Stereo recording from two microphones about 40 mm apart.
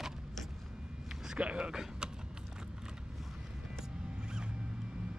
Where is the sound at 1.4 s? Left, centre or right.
Right.